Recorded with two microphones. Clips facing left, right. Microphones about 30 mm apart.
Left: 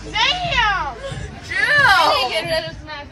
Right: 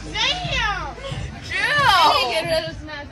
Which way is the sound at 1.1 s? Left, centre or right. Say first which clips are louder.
Left 1 dB; right.